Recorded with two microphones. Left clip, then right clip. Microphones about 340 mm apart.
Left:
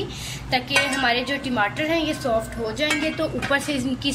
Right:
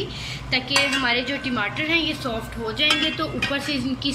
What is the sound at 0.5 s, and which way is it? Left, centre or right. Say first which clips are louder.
Speech: even; left.